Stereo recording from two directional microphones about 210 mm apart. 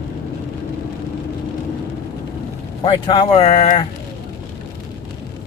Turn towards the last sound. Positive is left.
turn(degrees=30)  # may be behind; listen again after turning